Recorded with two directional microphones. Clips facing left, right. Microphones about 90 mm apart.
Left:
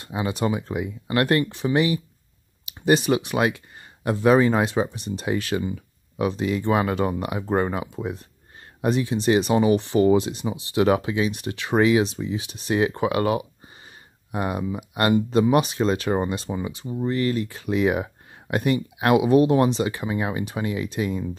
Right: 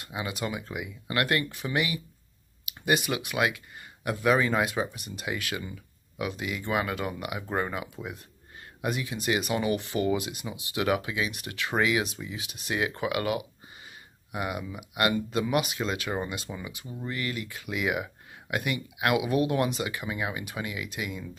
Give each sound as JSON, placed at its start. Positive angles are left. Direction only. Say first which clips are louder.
{"t": 0.0, "sound": "speech", "louder": "left 8 dB", "side_deg": 30}